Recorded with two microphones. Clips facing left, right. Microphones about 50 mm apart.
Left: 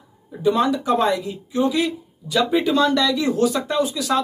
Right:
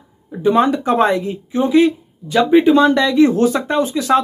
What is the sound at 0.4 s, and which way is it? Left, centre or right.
Speech, right.